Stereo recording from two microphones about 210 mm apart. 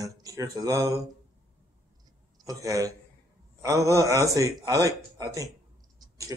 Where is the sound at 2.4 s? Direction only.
15° right (ahead or behind).